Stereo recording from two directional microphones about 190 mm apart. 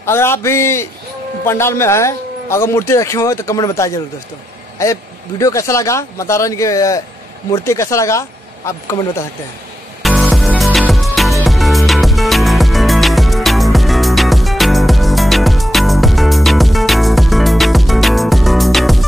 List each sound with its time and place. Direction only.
0.0 s a man's voice: 15° left (ahead or behind)
5.4 s a man's voice: 15° left (ahead or behind)
10.0 s music: centre (ahead or behind)